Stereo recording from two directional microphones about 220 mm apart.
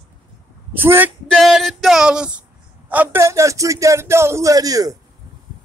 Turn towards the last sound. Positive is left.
turn(degrees=-15)  # may be behind; listen again after turning